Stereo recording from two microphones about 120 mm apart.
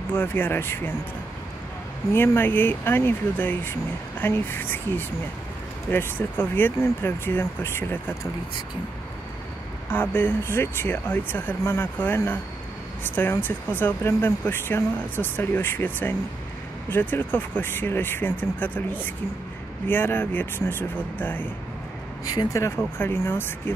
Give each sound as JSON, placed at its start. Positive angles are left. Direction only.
{"t": 0.1, "sound": "speech", "side_deg": 15}
{"t": 2.1, "sound": "speech", "side_deg": 20}
{"t": 9.8, "sound": "speech", "side_deg": 15}
{"t": 22.5, "sound": "speech", "side_deg": 25}